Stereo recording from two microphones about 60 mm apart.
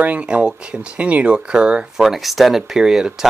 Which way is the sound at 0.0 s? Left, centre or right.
Right.